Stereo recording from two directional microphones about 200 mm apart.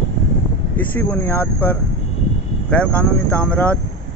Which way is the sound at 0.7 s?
5° left (ahead or behind).